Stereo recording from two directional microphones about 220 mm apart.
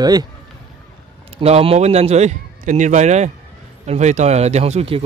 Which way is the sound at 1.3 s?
30° right (ahead or behind).